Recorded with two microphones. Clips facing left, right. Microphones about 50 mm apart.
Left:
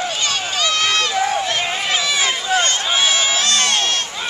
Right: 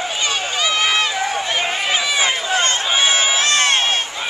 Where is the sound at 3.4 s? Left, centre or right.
Right.